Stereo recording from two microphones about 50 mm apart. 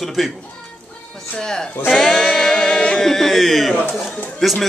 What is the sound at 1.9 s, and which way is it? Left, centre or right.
A man's voice, centre.